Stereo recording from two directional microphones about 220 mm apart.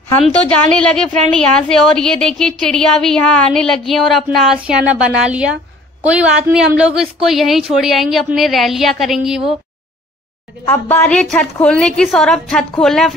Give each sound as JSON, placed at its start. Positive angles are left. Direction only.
{"t": 0.2, "sound": "a woman's voice", "side_deg": 5}
{"t": 10.6, "sound": "a woman's voice", "side_deg": 10}